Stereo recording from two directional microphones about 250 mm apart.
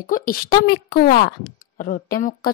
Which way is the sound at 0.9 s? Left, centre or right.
Left.